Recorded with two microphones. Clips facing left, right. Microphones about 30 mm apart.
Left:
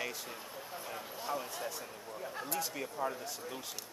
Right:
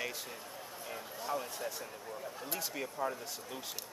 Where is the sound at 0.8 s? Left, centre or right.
Centre.